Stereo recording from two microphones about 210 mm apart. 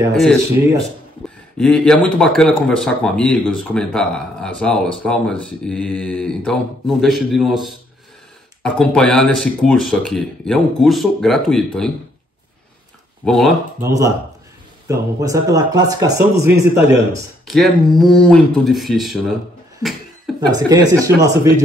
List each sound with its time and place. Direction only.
1.6 s speech: 5° left (ahead or behind)
13.2 s speech: centre (ahead or behind)
13.7 s speech: 15° right (ahead or behind)
17.5 s speech: centre (ahead or behind)
19.8 s a sound: centre (ahead or behind)
20.3 s speech: 20° right (ahead or behind)